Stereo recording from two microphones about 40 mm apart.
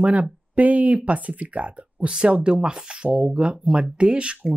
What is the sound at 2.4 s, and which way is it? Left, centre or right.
Speech, right.